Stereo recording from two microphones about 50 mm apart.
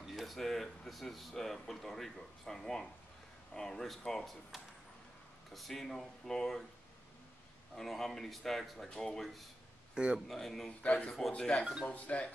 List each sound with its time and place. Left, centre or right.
0.1 s speech: centre
5.5 s speech: centre
7.7 s speech: centre
10.8 s a man's voice: left